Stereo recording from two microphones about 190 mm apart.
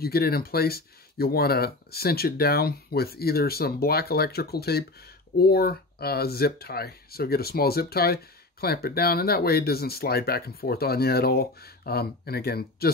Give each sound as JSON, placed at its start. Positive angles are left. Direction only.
{"t": 0.0, "sound": "speech", "side_deg": 55}